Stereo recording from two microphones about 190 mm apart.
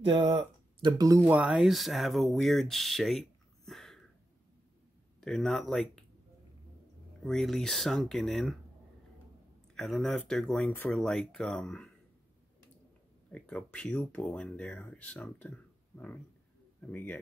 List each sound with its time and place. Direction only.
0.1 s speech: 30° right (ahead or behind); by 4.0 s centre (ahead or behind)
5.2 s speech: 5° left (ahead or behind)
7.2 s speech: centre (ahead or behind)
9.8 s speech: centre (ahead or behind)
13.3 s speech: 5° left (ahead or behind)